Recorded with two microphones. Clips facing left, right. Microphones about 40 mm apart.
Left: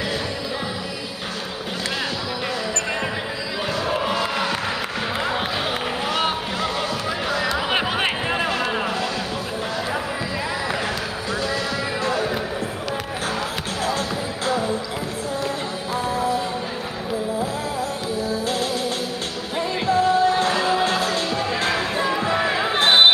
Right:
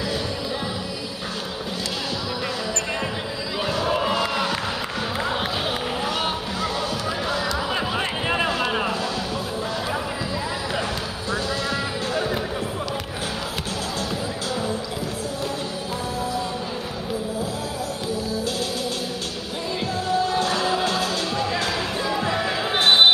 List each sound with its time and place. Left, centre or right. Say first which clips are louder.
3.6 s crowd: right 1 dB; centre
6.0 s boat: left 2 dB; left
6.8 s basketball bounce: left 1 dB; left
11.4 s music: left 1 dB; left
19.9 s music: left 6 dB; left